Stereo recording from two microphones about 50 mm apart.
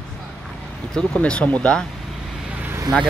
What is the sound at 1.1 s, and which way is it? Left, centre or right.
Speech, left.